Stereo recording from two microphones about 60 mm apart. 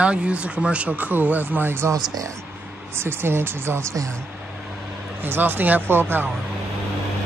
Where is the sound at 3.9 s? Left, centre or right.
Right.